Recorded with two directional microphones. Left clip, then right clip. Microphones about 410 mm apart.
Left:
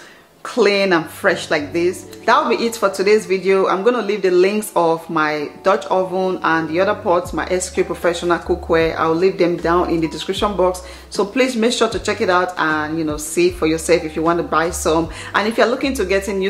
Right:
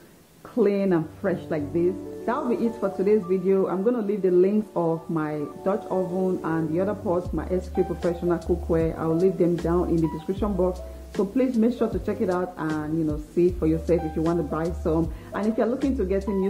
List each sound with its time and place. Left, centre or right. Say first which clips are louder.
0.6 s speech: left 8 dB; centre
4.7 s speech: left 10 dB; centre
5.2 s speech: left 10 dB; centre